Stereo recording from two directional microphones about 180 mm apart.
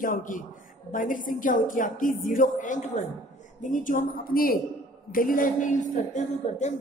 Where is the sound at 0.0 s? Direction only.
50° left (ahead or behind).